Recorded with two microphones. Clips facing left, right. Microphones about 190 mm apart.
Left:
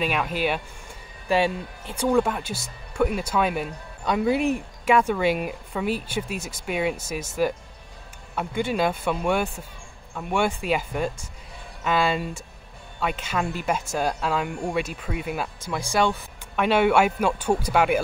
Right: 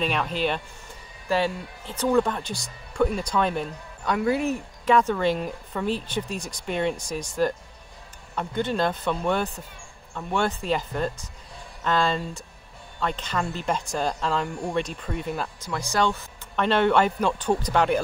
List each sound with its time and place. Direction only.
0.0 s speech: 5° left (ahead or behind)